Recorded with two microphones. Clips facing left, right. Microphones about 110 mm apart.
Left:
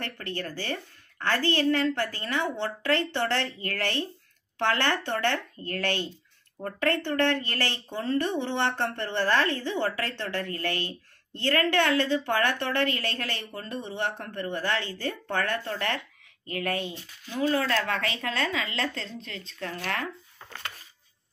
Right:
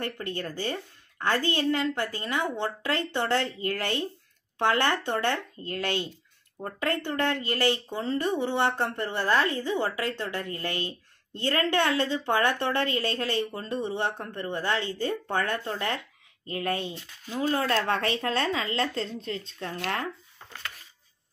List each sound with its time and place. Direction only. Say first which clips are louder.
0.0 s a woman's voice: right 2 dB; 20° right (ahead or behind)